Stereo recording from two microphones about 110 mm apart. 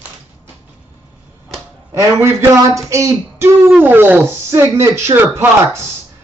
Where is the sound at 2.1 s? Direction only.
25° right (ahead or behind).